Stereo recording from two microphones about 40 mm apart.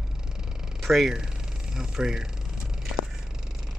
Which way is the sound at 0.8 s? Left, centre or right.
Centre.